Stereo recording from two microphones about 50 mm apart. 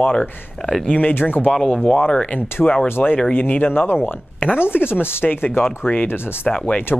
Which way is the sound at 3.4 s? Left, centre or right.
Left.